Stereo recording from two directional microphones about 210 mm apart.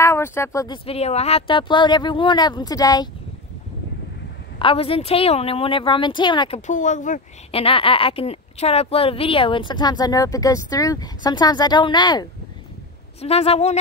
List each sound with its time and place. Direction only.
0.0 s speech: 10° left (ahead or behind)
0.8 s speech: 30° left (ahead or behind)
4.6 s speech: 25° left (ahead or behind)
6.7 s speech: 35° left (ahead or behind)